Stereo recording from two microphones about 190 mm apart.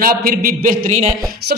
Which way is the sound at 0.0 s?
50° right (ahead or behind).